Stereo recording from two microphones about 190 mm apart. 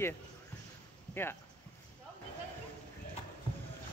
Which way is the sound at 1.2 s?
10° left (ahead or behind).